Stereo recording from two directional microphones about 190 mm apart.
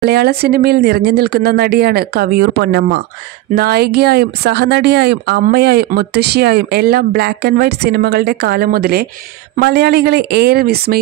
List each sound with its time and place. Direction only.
0.0 s speech: 60° right (ahead or behind)